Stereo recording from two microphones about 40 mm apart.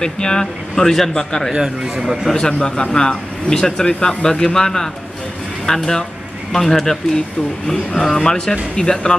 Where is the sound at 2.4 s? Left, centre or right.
Left.